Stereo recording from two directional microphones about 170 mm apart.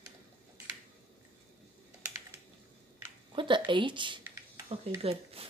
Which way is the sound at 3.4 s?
30° right (ahead or behind).